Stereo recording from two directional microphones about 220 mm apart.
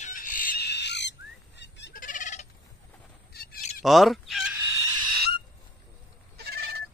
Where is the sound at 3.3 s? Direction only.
45° left (ahead or behind).